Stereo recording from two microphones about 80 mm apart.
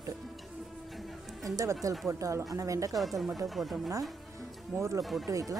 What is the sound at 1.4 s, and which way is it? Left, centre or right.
Speech, right.